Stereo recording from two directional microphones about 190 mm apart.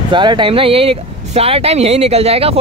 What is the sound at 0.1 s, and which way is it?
Speech, 25° right (ahead or behind).